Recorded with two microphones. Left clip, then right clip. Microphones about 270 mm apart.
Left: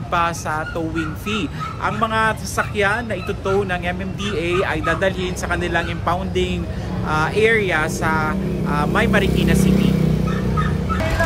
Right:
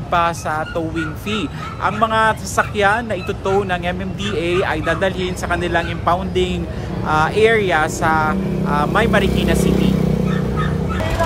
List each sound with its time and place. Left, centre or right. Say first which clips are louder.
0.1 s speech: right 3 dB; centre
9.7 s vehicle: right 2 dB; right